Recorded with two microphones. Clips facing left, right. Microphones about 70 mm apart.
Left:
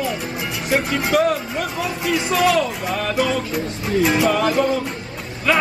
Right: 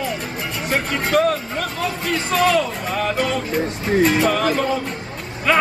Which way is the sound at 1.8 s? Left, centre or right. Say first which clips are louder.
Left 1 dB; centre.